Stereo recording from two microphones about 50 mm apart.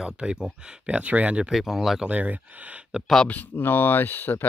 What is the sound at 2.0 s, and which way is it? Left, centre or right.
Speech, right.